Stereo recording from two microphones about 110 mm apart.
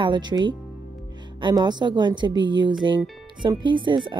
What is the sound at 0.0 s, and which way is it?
Speech, 45° right (ahead or behind).